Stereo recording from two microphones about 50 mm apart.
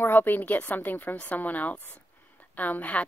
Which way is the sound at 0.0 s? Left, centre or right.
Left.